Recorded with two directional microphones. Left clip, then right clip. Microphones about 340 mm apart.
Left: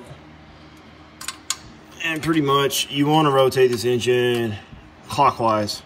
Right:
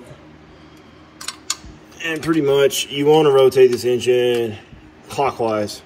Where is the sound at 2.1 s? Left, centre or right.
Centre.